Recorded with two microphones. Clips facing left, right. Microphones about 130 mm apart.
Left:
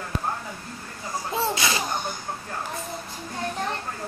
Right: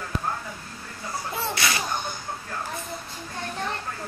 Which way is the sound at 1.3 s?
20° left (ahead or behind).